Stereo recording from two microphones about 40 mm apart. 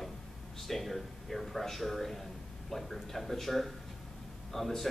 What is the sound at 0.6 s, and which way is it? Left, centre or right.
A man's voice, centre.